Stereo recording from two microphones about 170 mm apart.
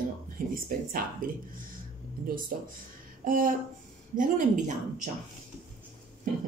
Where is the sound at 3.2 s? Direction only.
55° right (ahead or behind).